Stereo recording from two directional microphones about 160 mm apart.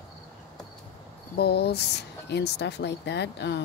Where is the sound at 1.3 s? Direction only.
85° left.